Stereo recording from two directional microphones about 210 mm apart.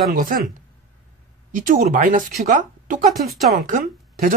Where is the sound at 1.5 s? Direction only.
40° right (ahead or behind).